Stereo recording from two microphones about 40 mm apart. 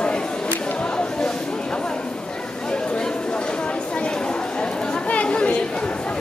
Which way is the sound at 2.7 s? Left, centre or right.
Left.